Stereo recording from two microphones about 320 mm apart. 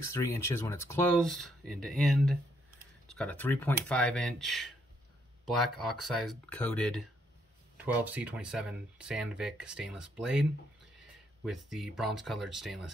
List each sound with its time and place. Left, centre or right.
0.1 s speech: centre